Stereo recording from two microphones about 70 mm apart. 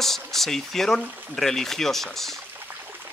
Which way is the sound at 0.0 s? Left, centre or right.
Centre.